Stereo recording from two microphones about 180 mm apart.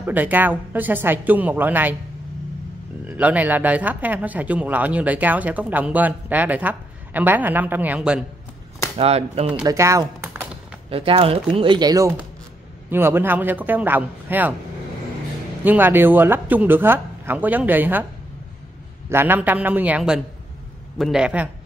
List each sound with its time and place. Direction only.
0.0 s speech: 10° right (ahead or behind)
3.1 s speech: 10° right (ahead or behind)
8.9 s speech: 35° right (ahead or behind)
9.6 s speech: 15° right (ahead or behind)
10.9 s speech: 30° right (ahead or behind); by 14.5 s 10° right (ahead or behind)
15.6 s speech: 10° right (ahead or behind)
19.0 s a man's voice: 10° right (ahead or behind)